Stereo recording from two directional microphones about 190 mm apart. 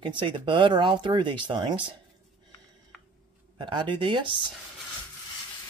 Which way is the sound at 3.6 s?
25° right (ahead or behind).